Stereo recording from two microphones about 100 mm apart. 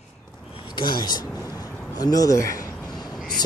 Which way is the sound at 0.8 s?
45° left (ahead or behind).